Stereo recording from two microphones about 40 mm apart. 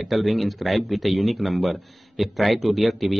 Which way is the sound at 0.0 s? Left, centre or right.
Centre.